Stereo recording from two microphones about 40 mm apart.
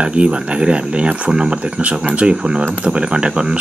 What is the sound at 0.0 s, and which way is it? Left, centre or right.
Speech, right.